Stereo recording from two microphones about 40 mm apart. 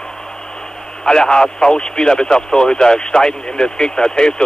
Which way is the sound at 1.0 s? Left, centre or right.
Centre.